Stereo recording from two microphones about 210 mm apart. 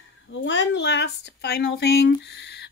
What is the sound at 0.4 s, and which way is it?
Speech, 60° left (ahead or behind).